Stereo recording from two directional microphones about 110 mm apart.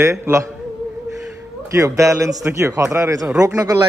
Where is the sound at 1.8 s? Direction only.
25° right (ahead or behind).